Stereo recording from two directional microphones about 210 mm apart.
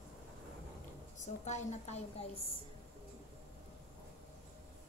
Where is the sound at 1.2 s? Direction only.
35° left (ahead or behind).